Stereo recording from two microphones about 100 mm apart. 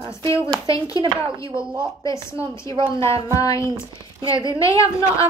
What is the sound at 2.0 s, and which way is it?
A woman's voice, 30° left (ahead or behind).